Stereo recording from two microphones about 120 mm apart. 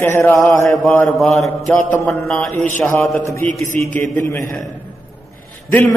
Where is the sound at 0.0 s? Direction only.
20° left (ahead or behind).